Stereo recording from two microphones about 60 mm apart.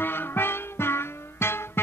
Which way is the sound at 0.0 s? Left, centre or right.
Left.